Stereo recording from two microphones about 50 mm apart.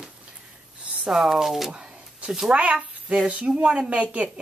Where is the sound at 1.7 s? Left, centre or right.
Right.